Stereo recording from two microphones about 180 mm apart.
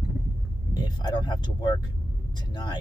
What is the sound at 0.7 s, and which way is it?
Speech, 20° left (ahead or behind).